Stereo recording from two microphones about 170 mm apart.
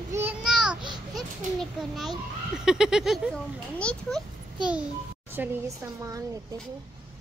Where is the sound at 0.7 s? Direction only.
25° right (ahead or behind).